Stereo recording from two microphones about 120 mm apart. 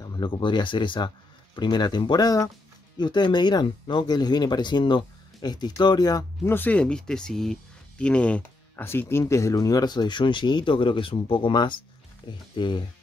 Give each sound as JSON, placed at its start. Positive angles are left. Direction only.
{"t": 0.0, "sound": "speech", "side_deg": 35}
{"t": 6.5, "sound": "speech", "side_deg": 15}